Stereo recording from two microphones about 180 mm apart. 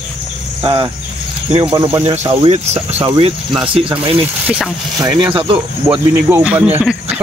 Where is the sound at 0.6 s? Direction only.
30° right (ahead or behind).